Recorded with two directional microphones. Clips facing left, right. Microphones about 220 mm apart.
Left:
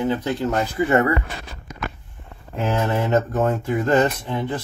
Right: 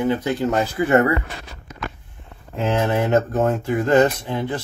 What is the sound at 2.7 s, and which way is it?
Speech, 20° right (ahead or behind).